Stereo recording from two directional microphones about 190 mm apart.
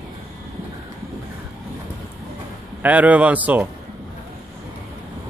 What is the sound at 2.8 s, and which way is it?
Speech, 10° right (ahead or behind).